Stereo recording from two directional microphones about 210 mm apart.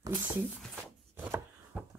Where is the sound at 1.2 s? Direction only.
10° right (ahead or behind).